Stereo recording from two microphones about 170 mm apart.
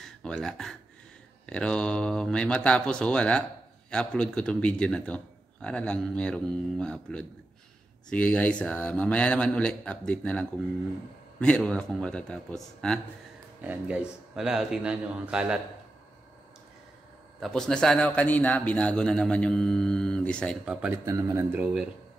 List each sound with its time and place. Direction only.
0.0 s a man's voice: 5° left (ahead or behind)
13.6 s a man's voice: 10° right (ahead or behind)
17.4 s a man's voice: 5° left (ahead or behind)
20.6 s a man's voice: 5° right (ahead or behind)
21.0 s speech: 20° right (ahead or behind)